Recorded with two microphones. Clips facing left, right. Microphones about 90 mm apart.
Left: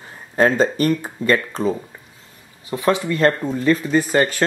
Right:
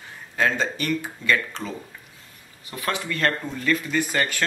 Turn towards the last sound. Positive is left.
turn(degrees=35)  # may be behind; listen again after turning